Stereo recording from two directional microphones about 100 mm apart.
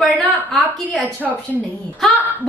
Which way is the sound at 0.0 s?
Centre (ahead or behind).